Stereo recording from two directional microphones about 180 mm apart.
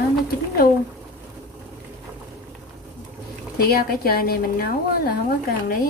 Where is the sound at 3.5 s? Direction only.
60° left (ahead or behind).